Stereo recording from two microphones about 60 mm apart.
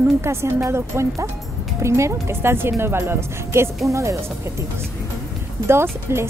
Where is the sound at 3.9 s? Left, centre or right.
Right.